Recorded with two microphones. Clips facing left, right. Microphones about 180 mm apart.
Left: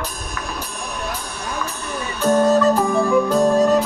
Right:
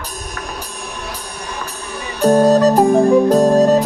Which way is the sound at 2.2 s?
35° right (ahead or behind).